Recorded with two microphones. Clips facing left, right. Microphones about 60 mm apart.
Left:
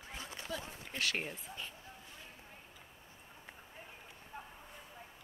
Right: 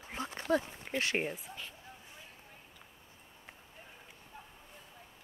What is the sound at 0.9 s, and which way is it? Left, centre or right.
Speech, right.